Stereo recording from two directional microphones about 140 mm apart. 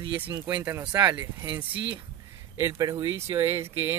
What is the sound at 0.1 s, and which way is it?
Speech, 30° right (ahead or behind).